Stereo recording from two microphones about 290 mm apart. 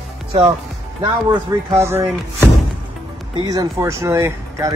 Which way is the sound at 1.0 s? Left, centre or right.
Centre.